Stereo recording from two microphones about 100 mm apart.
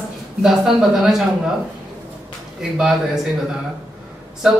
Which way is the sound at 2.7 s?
5° right (ahead or behind).